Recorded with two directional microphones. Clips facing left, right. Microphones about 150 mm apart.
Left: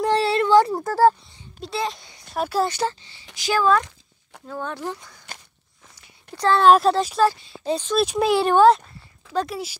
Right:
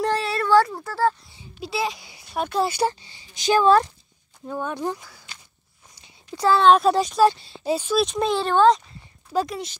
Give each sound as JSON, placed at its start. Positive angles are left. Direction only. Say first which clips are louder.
{"t": 0.1, "sound": "a sound", "louder": "left 4 dB", "side_deg": 25}
{"t": 0.7, "sound": "speech", "louder": "left 6 dB", "side_deg": 40}
{"t": 1.6, "sound": "a child's voice", "louder": "even", "side_deg": -5}
{"t": 2.7, "sound": "speech", "louder": "right 2 dB", "side_deg": -15}
{"t": 3.4, "sound": "speech", "louder": "right 3 dB", "side_deg": -25}
{"t": 4.5, "sound": "speech", "louder": "right 3 dB", "side_deg": -15}
{"t": 5.3, "sound": "biting", "louder": "left 8 dB", "side_deg": 50}
{"t": 6.3, "sound": "speech", "louder": "even", "side_deg": -10}
{"t": 6.6, "sound": "speech", "louder": "left 2 dB", "side_deg": 5}
{"t": 7.2, "sound": "speech", "louder": "right 2 dB", "side_deg": -5}
{"t": 8.0, "sound": "speech", "louder": "left 3 dB", "side_deg": 5}
{"t": 9.3, "sound": "speech", "louder": "right 1 dB", "side_deg": -5}